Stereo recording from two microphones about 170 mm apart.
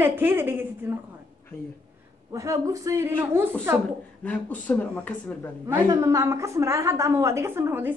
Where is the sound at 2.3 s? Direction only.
20° right (ahead or behind).